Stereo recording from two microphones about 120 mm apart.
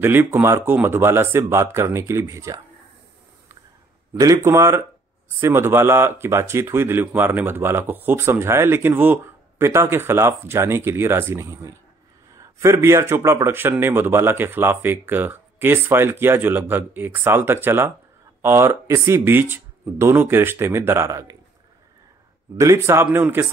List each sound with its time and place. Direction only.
0.0 s speech: 15° right (ahead or behind)
4.1 s speech: 25° right (ahead or behind)
22.6 s speech: 25° right (ahead or behind)